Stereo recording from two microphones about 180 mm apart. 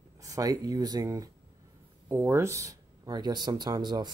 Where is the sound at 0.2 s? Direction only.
20° right (ahead or behind).